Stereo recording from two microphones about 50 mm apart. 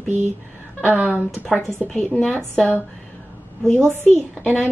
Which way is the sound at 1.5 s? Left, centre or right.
Centre.